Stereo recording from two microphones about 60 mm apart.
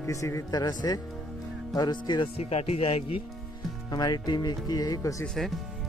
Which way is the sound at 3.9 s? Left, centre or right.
Left.